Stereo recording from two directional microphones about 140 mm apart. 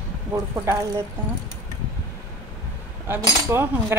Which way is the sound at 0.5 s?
20° right (ahead or behind).